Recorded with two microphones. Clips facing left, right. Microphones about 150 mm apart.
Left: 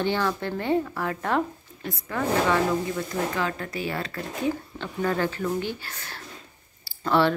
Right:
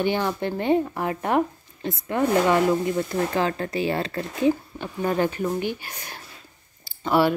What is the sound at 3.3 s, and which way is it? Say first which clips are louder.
Speech: right 5 dB; 35° right (ahead or behind).